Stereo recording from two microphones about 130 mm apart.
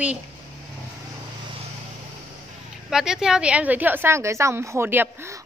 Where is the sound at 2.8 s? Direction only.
5° right (ahead or behind).